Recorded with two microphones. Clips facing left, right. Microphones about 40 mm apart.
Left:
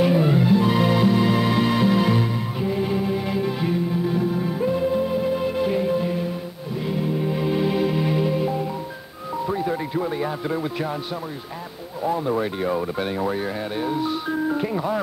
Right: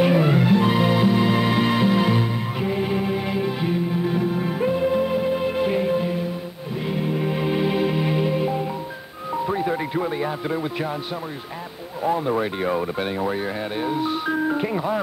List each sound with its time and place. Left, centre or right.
0.1 s music: right
0.7 s music: centre
2.7 s music: right
3.3 s music: right
4.0 s music: right
4.8 s music: right
5.2 s music: right
7.3 s music: right
9.5 s music: right
10.0 s a man's voice: right
12.0 s speech: right
13.9 s speech: right